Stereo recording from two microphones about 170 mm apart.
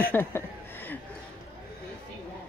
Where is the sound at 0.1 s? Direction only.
15° left (ahead or behind).